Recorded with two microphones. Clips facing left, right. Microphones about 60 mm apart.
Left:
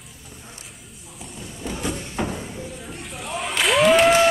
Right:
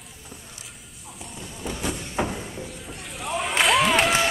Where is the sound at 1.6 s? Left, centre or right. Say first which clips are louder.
Left 2 dB; centre.